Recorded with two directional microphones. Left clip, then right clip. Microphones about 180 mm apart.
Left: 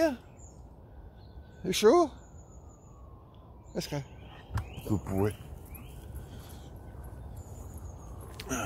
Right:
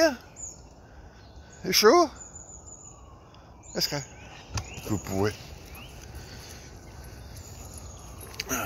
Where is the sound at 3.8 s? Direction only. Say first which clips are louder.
Right 7 dB; 5° left (ahead or behind).